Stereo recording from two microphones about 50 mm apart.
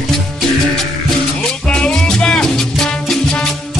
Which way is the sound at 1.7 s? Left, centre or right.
Centre.